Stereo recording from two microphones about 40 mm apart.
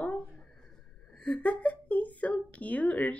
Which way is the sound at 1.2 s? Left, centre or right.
Left.